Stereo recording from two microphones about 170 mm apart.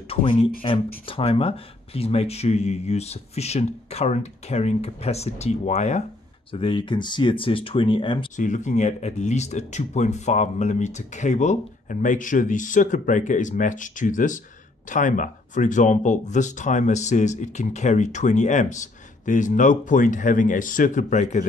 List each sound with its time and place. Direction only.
0.1 s speech: 30° left (ahead or behind)
6.5 s speech: 30° left (ahead or behind)
8.4 s speech: 45° left (ahead or behind)